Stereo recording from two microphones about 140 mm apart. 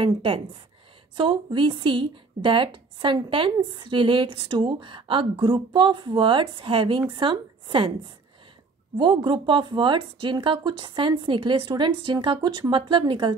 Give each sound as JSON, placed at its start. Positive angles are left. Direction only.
{"t": 0.0, "sound": "speech", "side_deg": -40}
{"t": 8.9, "sound": "speech", "side_deg": -35}